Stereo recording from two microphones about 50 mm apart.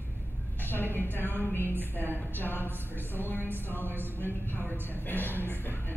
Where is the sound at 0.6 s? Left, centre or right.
Left.